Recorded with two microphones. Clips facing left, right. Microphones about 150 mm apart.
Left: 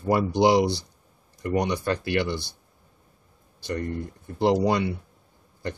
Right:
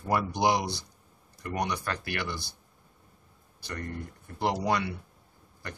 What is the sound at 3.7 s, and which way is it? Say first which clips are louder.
Speech: left 8 dB; 25° left (ahead or behind).